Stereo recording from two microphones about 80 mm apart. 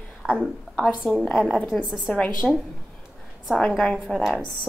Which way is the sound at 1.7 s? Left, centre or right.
Centre.